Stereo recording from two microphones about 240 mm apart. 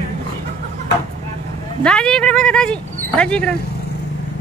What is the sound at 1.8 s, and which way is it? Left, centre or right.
Speech, centre.